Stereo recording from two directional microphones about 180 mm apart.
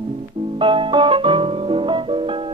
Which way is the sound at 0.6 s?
30° right (ahead or behind).